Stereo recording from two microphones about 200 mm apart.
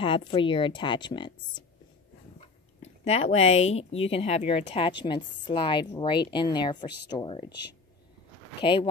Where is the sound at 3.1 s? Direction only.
30° left (ahead or behind).